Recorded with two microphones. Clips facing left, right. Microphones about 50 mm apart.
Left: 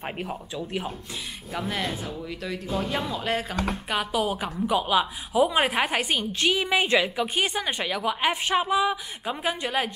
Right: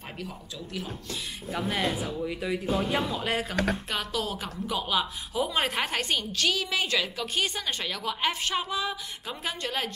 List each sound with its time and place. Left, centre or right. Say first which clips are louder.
0.2 s speech: left 6 dB; left
1.5 s speech: right 1 dB; centre
3.9 s a woman's voice: left 5 dB; centre